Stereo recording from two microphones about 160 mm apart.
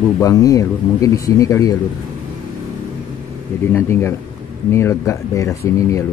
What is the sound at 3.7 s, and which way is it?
Speech, 15° left (ahead or behind).